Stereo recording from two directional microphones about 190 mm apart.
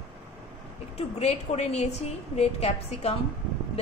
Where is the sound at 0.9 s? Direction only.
35° left (ahead or behind).